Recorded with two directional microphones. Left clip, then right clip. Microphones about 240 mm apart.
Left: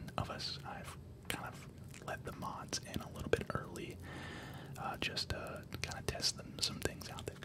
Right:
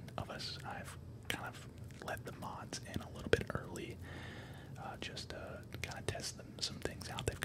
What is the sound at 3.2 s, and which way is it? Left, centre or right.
Whispering, centre.